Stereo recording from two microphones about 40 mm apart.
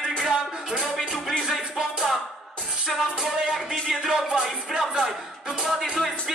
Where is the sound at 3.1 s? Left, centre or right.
Centre.